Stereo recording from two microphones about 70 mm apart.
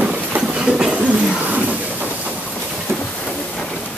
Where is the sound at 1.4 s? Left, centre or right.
Right.